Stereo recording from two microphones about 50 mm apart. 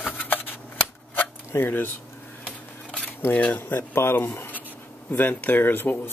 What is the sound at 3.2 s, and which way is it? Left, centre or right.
Speech, left.